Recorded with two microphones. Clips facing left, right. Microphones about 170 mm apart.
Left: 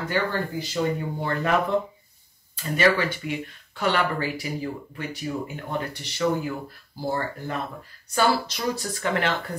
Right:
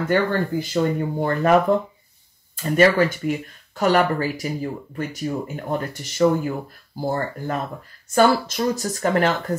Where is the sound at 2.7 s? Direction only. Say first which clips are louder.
Right 5 dB; 45° right (ahead or behind).